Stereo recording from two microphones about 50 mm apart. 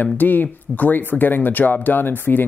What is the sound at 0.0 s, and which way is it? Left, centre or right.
Speech, left.